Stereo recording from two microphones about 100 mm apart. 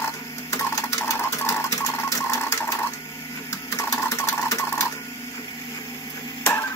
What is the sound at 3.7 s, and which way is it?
Sewing machine, 30° left (ahead or behind).